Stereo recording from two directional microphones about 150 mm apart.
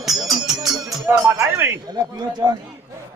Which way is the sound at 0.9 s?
15° right (ahead or behind).